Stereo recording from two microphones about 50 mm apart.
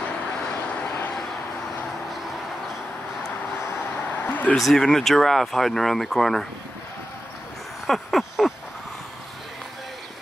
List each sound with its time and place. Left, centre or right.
4.3 s speech: left
4.6 s speech: centre
7.8 s a sound: centre